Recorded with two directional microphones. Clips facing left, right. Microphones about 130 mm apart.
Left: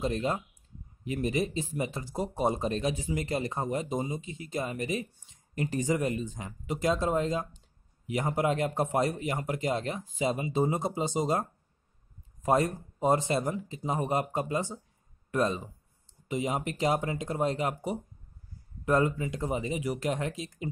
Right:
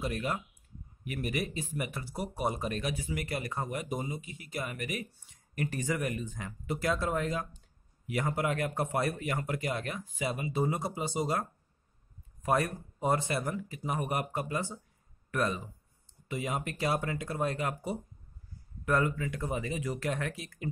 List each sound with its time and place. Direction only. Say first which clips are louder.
0.0 s speech: left 4 dB; 25° left (ahead or behind)
12.4 s speech: left 4 dB; 25° left (ahead or behind)